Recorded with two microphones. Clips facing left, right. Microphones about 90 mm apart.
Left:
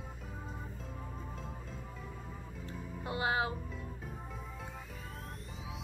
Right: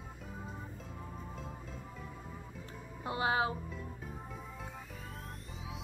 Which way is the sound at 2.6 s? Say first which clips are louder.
Left 1 dB; 25° right (ahead or behind).